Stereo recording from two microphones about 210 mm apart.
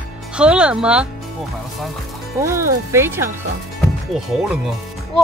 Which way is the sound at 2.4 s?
15° right (ahead or behind).